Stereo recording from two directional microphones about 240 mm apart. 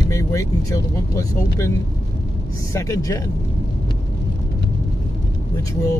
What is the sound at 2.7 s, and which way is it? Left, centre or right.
Speech, centre.